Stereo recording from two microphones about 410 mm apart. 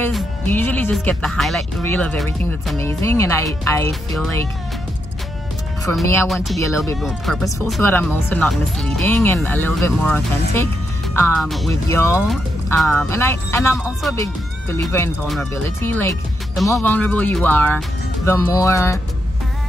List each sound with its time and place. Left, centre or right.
0.0 s speech: centre
5.9 s speech: centre